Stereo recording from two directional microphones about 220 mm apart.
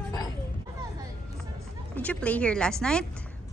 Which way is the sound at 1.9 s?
5° left (ahead or behind).